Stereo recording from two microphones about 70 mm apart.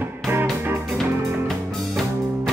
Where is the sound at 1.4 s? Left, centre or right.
Centre.